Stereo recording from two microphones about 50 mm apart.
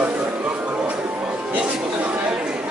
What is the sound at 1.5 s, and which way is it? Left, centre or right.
Chatter, right.